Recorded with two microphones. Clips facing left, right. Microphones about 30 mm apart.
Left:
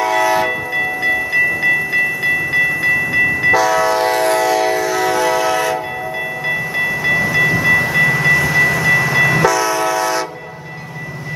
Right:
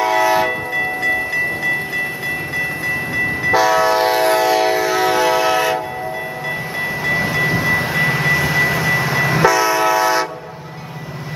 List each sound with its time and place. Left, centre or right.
0.0 s train: centre
0.7 s train: left
3.5 s train: centre
7.3 s train: centre